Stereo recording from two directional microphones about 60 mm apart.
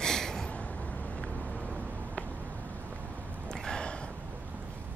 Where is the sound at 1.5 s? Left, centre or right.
Right.